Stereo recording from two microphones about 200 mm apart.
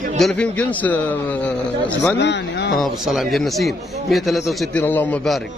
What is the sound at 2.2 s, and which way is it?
Speech, 60° left (ahead or behind).